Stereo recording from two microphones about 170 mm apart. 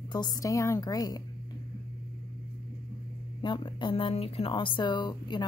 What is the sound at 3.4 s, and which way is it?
Speech, 25° left (ahead or behind).